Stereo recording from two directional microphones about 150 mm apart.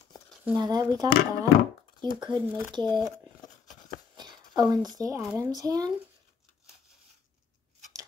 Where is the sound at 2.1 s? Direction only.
30° right (ahead or behind).